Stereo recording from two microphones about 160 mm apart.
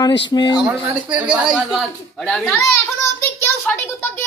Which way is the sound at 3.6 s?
15° left (ahead or behind).